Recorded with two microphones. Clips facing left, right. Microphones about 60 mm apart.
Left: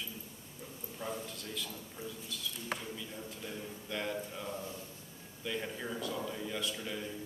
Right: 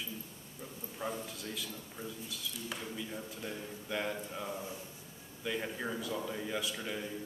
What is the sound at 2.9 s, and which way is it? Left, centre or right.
A man's voice, centre.